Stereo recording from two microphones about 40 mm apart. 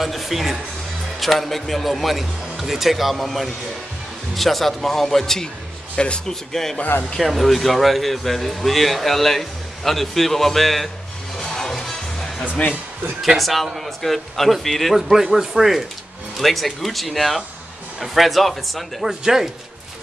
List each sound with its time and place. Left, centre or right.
0.0 s speech: centre
4.4 s speech: centre
5.9 s speech: left
6.2 s a man's voice: centre
11.3 s music: centre
13.2 s speech: centre
15.0 s speech: centre
19.0 s speech: centre